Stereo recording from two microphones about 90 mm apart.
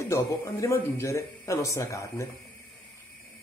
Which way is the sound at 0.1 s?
30° left (ahead or behind).